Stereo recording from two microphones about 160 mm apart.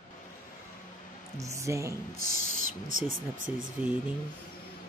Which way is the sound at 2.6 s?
45° left (ahead or behind).